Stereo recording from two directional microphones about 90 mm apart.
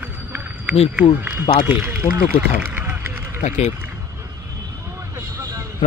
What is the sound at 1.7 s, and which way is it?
Speech, 25° right (ahead or behind).